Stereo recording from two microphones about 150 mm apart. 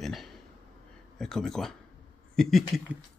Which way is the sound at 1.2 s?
5° left (ahead or behind).